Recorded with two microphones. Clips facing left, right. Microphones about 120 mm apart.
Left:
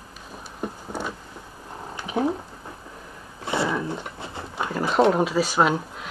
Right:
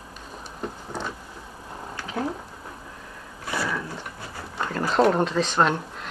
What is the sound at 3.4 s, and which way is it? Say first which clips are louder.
Dog: left 4 dB; 25° left (ahead or behind).